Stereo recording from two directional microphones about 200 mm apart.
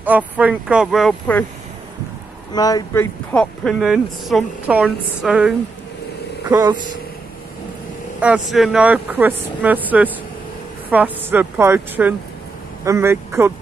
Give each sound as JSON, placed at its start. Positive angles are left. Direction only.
{"t": 0.0, "sound": "speech", "side_deg": -10}
{"t": 2.5, "sound": "speech", "side_deg": 20}
{"t": 6.5, "sound": "speech", "side_deg": -20}
{"t": 8.2, "sound": "speech", "side_deg": -5}